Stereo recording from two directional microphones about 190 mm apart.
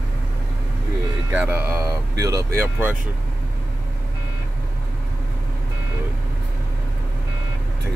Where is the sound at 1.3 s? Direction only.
10° right (ahead or behind).